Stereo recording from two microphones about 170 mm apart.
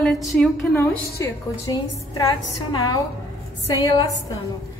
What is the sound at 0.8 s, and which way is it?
A woman's voice, 15° left (ahead or behind).